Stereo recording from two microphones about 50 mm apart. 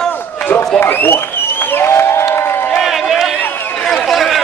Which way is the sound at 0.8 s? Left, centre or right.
Left.